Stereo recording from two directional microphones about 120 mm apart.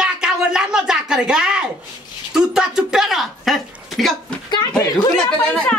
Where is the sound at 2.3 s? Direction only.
5° right (ahead or behind).